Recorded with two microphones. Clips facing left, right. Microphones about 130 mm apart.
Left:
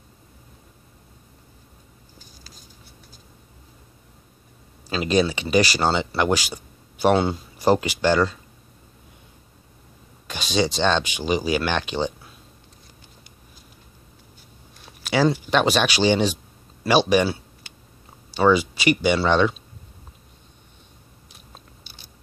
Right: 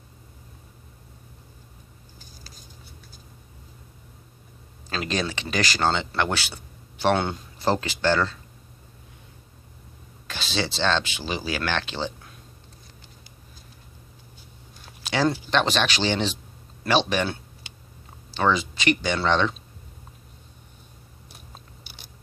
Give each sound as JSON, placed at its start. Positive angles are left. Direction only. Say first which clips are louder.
{"t": 4.8, "sound": "speech", "louder": "left 7 dB", "side_deg": 10}
{"t": 10.2, "sound": "speech", "louder": "left 6 dB", "side_deg": 15}
{"t": 15.0, "sound": "speech", "louder": "left 3 dB", "side_deg": 10}